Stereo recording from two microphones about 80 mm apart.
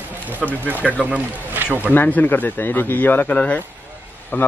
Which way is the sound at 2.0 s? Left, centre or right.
Left.